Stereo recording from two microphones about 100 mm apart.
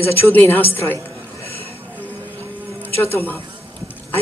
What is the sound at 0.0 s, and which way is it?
Speech, 20° left (ahead or behind).